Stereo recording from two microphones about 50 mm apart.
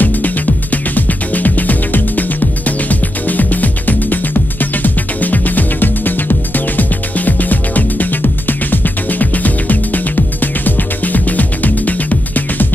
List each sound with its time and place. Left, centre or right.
0.0 s music: left